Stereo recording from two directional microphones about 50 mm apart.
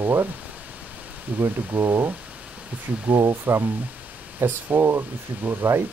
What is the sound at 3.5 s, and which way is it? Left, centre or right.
Speech, right.